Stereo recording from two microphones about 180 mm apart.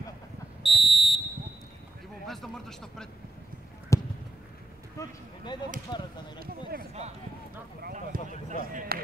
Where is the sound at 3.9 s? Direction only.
15° left (ahead or behind).